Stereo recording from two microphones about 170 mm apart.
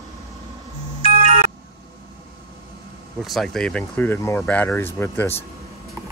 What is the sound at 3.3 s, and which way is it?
Speech, centre (ahead or behind).